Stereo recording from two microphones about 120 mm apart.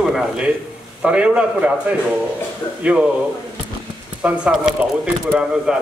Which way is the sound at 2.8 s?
10° right (ahead or behind).